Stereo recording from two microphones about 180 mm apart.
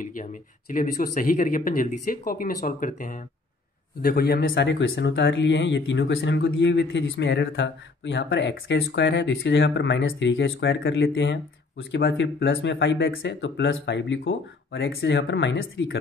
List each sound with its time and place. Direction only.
0.0 s speech: 45° left (ahead or behind); by 16.0 s 90° left